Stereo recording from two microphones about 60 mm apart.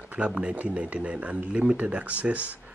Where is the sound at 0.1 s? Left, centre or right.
Centre.